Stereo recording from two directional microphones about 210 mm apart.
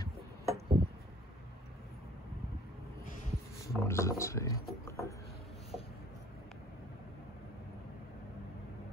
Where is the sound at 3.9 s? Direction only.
15° left (ahead or behind).